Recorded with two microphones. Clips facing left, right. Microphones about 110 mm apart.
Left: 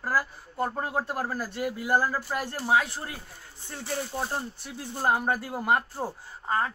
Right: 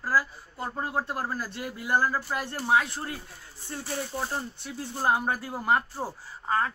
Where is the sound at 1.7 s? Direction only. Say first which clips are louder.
Right 1 dB; 45° left (ahead or behind).